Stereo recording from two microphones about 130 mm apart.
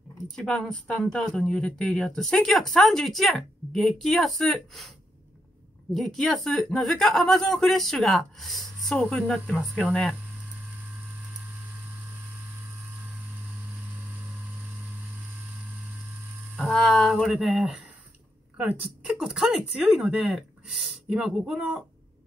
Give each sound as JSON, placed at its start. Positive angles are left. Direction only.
{"t": 0.4, "sound": "speech", "side_deg": 5}
{"t": 5.9, "sound": "speech", "side_deg": 5}
{"t": 13.9, "sound": "vehicle", "side_deg": -15}
{"t": 16.5, "sound": "speech", "side_deg": 5}